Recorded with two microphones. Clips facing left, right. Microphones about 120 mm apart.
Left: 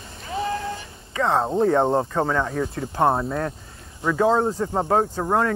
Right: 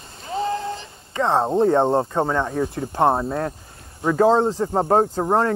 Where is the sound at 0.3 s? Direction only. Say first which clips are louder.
Right 2 dB; 25° right (ahead or behind).